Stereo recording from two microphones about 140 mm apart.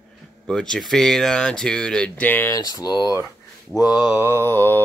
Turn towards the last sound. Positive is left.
turn(degrees=15)  # may be behind; listen again after turning